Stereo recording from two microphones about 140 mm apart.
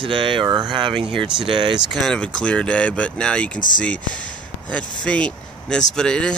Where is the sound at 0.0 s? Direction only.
35° right (ahead or behind).